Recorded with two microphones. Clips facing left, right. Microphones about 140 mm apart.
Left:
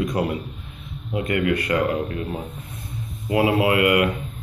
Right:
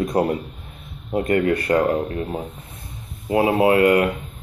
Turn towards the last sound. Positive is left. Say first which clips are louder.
# right 3 dB
turn(degrees=-35)  # may be behind; listen again after turning